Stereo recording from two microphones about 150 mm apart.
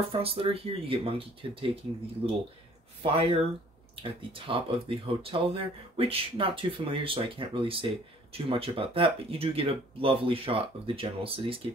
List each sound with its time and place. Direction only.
0.1 s speech: 40° right (ahead or behind)
3.0 s speech: 40° right (ahead or behind)